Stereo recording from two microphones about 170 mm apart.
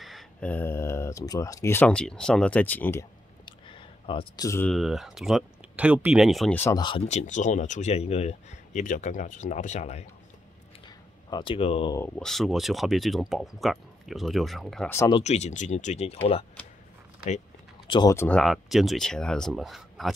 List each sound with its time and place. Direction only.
0.0 s speech: centre (ahead or behind)
3.4 s a sound: 30° left (ahead or behind)
4.5 s speech: 15° left (ahead or behind)
4.7 s speech: centre (ahead or behind)
6.5 s speech: 15° left (ahead or behind)
7.1 s speech: 45° left (ahead or behind)
11.2 s speech: 30° left (ahead or behind)
12.2 s speech: centre (ahead or behind)
14.9 s speech: 15° left (ahead or behind)
15.1 s speech: 40° left (ahead or behind)
17.8 s speech: 30° left (ahead or behind)
18.1 s speech: 10° left (ahead or behind)
18.4 s speech: centre (ahead or behind)